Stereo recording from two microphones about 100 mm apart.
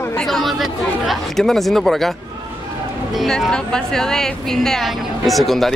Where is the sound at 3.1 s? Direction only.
Centre (ahead or behind).